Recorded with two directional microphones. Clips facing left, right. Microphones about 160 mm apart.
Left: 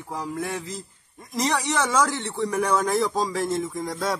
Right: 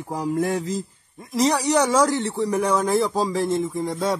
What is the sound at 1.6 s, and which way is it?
Speech, 35° right (ahead or behind).